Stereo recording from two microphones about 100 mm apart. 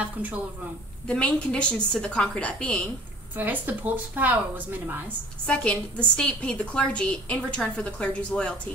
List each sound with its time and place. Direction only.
1.0 s a woman's voice: 10° left (ahead or behind)
3.3 s a woman's voice: 20° right (ahead or behind)
5.5 s a woman's voice: 10° left (ahead or behind)